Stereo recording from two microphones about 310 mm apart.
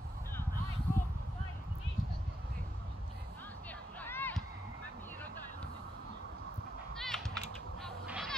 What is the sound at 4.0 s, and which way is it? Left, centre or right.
Music, centre.